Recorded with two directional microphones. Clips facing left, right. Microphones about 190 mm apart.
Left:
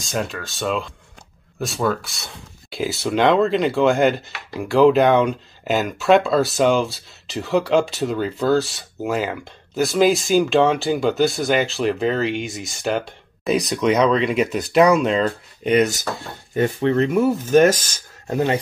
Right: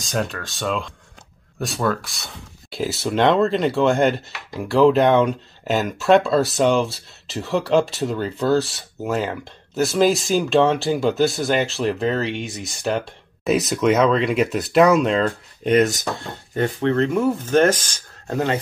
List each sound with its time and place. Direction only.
0.0 s speech: centre (ahead or behind)
16.5 s speech: 10° left (ahead or behind)